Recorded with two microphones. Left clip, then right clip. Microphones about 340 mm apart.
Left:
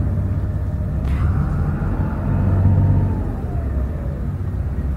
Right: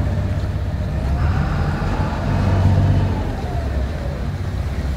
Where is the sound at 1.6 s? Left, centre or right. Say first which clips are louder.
Right 3 dB; right.